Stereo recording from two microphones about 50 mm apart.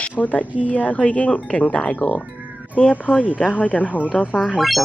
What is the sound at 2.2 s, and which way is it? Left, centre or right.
Music, right.